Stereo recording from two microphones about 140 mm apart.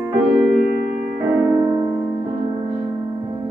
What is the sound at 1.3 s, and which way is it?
Piano, 20° right (ahead or behind).